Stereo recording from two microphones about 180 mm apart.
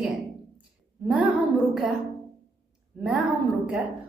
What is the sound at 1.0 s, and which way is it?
Speech, 10° right (ahead or behind).